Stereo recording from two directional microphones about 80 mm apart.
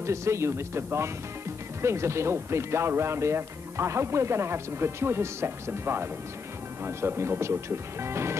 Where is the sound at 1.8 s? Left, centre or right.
Right.